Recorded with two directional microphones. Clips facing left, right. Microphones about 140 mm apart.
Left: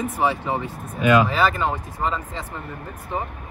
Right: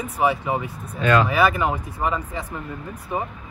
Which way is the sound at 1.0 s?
15° left (ahead or behind).